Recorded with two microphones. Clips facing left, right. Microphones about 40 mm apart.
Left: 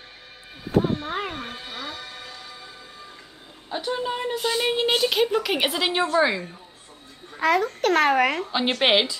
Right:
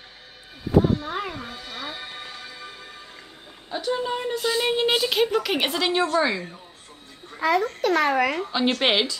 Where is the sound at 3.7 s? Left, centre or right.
Centre.